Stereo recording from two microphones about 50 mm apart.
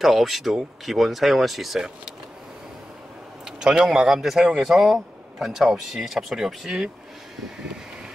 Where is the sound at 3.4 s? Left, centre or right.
Centre.